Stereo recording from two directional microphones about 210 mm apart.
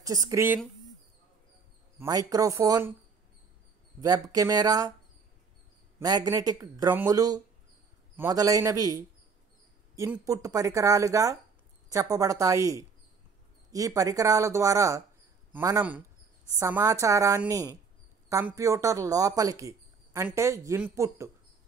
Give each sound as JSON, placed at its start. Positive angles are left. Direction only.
{"t": 0.0, "sound": "speech", "side_deg": -15}
{"t": 2.0, "sound": "speech", "side_deg": -15}
{"t": 4.0, "sound": "speech", "side_deg": -15}
{"t": 5.9, "sound": "speech", "side_deg": -15}